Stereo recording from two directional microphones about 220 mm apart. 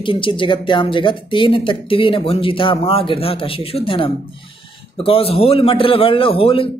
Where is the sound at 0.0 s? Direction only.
25° left (ahead or behind).